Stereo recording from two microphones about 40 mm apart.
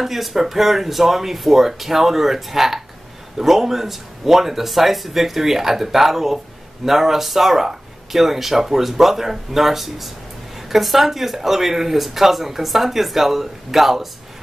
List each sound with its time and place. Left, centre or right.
0.0 s speech: centre